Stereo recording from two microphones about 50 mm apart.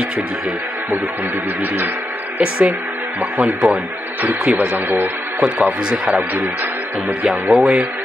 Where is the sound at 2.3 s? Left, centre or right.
Right.